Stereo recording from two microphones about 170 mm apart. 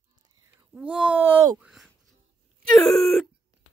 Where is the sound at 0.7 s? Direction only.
5° right (ahead or behind).